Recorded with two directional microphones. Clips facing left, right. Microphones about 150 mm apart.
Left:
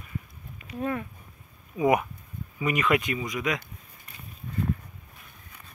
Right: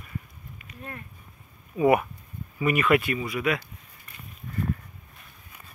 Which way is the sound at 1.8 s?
15° left (ahead or behind).